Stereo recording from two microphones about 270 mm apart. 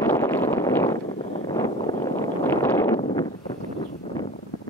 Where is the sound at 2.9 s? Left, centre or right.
Left.